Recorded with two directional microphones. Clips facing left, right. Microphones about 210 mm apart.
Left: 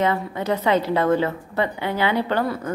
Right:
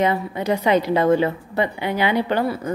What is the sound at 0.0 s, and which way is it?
A woman's voice, 15° right (ahead or behind).